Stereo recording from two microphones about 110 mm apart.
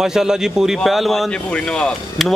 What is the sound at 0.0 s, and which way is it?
Speech, 5° right (ahead or behind).